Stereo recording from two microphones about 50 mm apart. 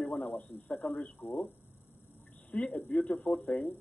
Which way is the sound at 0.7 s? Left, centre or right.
Left.